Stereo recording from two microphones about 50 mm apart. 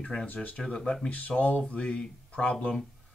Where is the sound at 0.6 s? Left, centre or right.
Centre.